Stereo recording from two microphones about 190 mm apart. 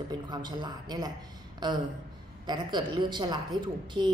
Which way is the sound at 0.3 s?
25° right (ahead or behind).